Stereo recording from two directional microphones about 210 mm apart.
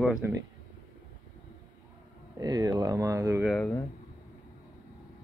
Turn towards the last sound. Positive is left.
turn(degrees=5)  # may be behind; listen again after turning